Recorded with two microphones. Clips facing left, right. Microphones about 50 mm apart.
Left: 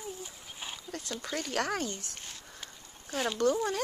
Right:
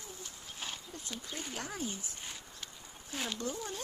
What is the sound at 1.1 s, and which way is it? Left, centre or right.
Speech, left.